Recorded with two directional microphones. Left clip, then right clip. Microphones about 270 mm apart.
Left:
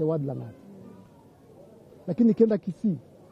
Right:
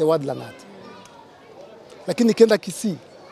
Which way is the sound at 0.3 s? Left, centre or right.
Centre.